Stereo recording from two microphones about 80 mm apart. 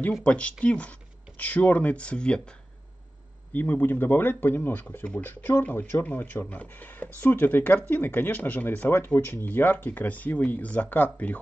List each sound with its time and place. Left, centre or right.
0.2 s speech: centre
3.5 s speech: left